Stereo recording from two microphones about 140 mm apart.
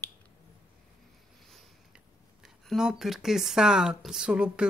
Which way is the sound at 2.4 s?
5° right (ahead or behind).